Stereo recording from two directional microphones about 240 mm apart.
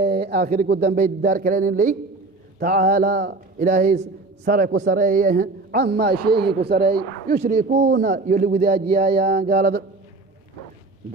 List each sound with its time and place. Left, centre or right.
0.0 s a man's voice: right
4.0 s a man's voice: right